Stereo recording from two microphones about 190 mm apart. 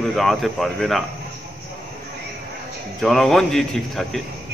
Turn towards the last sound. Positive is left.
turn(degrees=0)  # may be behind; listen again after turning